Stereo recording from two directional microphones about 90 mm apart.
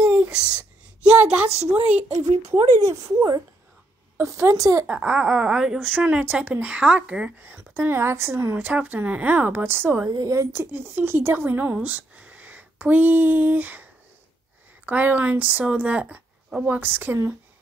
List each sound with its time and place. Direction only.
0.2 s a sound: 10° right (ahead or behind)
1.0 s speech: 20° right (ahead or behind)
2.1 s speech: 40° right (ahead or behind)
4.2 s speech: 35° right (ahead or behind)
4.8 s speech: 10° right (ahead or behind)
5.9 s speech: 20° right (ahead or behind)
8.6 s speech: 15° right (ahead or behind)
10.1 s a woman's voice: 35° right (ahead or behind); by 13.8 s 20° right (ahead or behind)
14.9 s speech: 20° right (ahead or behind)